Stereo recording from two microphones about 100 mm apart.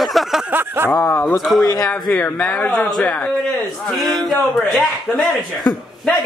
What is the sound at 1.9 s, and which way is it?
A man's voice, 10° left (ahead or behind).